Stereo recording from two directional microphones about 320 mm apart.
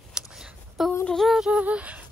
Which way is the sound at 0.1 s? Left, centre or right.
Centre.